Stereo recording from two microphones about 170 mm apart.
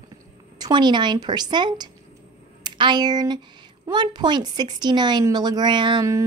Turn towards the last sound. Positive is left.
turn(degrees=-20)  # may be behind; listen again after turning